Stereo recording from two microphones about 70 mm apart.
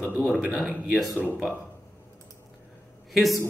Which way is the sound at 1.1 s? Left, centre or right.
Right.